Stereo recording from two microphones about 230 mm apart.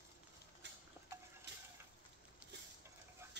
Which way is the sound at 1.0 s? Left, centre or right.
Centre.